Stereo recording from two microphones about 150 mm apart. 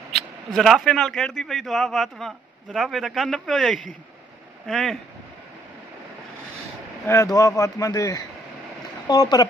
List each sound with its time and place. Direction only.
0.1 s a man's voice: centre (ahead or behind)
7.1 s speech: 20° left (ahead or behind)